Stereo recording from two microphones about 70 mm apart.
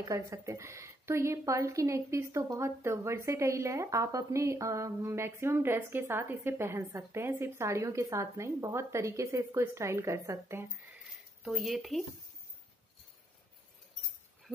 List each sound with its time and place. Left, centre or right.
0.1 s a woman's voice: right
11.4 s speech: centre